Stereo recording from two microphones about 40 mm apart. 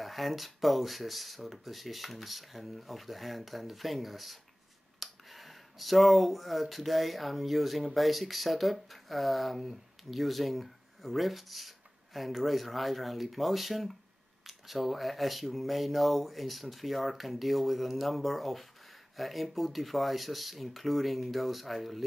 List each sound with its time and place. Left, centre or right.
0.0 s speech: centre